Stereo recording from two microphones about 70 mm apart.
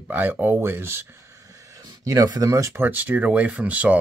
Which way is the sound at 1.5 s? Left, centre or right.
Right.